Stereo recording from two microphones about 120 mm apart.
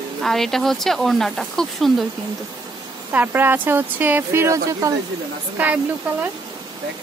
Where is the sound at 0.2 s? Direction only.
Centre (ahead or behind).